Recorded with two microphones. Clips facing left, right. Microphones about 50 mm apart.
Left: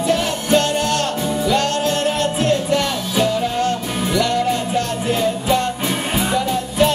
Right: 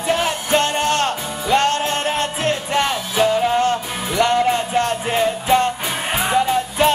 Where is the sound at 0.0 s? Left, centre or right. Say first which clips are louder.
Left 1 dB; right.